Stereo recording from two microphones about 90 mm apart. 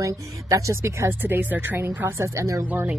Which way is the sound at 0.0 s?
35° right (ahead or behind).